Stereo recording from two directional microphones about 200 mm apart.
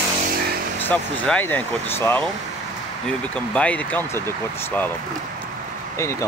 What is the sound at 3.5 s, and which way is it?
Speech, 5° left (ahead or behind).